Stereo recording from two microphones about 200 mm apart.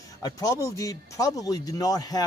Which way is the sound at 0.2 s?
15° left (ahead or behind).